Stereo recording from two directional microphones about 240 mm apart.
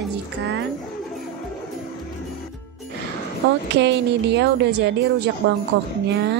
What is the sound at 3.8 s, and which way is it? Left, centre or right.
Speech, right.